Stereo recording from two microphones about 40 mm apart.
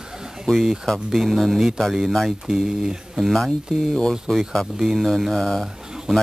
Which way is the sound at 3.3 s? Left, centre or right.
Centre.